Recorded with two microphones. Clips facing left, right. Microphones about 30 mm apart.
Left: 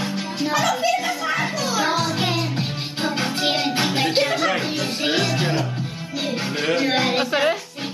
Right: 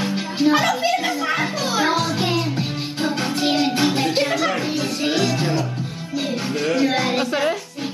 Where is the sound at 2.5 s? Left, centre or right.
Centre.